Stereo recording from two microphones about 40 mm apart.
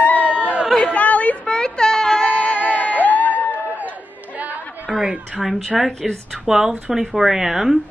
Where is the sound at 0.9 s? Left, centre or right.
Left.